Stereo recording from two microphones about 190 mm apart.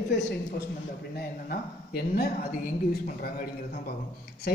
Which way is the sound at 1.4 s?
50° left (ahead or behind).